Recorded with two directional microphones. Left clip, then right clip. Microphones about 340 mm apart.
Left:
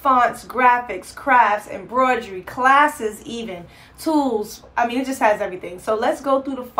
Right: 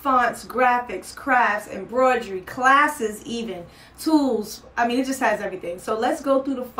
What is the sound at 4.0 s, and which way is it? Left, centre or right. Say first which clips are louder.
Speech: left 1 dB; left.